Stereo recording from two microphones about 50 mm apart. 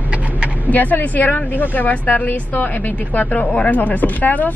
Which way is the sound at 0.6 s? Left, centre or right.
Left.